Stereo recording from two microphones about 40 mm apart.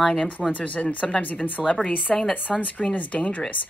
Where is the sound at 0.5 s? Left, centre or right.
Left.